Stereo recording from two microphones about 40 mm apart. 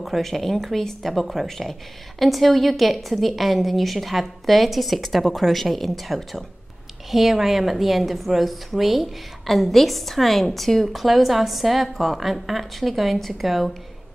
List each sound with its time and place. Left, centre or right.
0.0 s a woman's voice: centre